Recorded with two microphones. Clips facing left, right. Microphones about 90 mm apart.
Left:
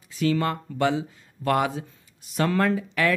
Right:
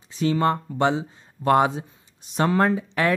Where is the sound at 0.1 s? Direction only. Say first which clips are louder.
Right 3 dB; 25° right (ahead or behind).